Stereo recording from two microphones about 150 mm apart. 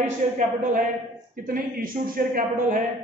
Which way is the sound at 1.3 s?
70° right (ahead or behind).